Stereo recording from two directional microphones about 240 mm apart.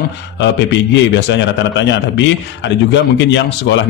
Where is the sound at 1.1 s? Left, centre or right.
Left.